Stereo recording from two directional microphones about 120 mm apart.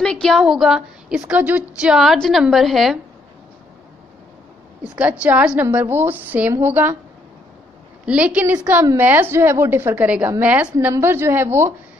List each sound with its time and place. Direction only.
0.0 s a woman's voice: 5° left (ahead or behind)
4.8 s a woman's voice: 10° right (ahead or behind)
8.0 s a woman's voice: 10° right (ahead or behind)